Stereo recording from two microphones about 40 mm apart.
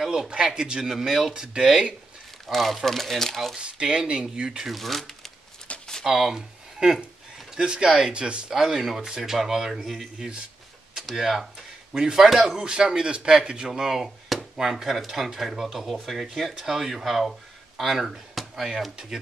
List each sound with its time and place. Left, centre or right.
0.0 s a man's voice: centre
0.9 s speech: centre
1.3 s a man's voice: centre
2.4 s speech: centre
3.5 s a man's voice: right
4.6 s speech: centre
5.7 s a sound: left
6.0 s speech: centre
6.8 s a man's voice: right
8.5 s speech: centre
10.1 s a man's voice: right
11.0 s speech: centre
12.5 s speech: right; by 18.7 s centre